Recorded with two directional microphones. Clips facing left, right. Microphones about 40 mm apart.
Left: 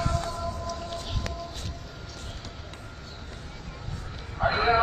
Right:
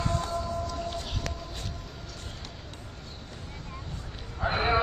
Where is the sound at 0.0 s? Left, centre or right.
Right.